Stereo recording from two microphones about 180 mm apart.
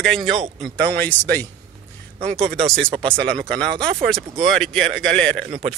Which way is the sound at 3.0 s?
30° right (ahead or behind).